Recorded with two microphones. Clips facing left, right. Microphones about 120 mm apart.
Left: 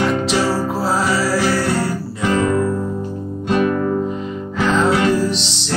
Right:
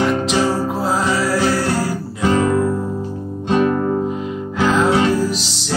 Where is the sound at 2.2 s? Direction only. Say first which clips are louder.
Right 1 dB; 30° right (ahead or behind).